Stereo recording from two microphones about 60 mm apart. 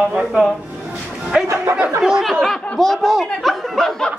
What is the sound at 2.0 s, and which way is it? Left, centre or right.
A man's voice, centre.